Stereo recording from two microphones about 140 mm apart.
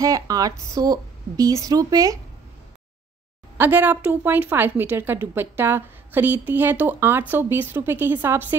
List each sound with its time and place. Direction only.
0.0 s speech: 25° right (ahead or behind)
3.5 s a woman's voice: 15° right (ahead or behind)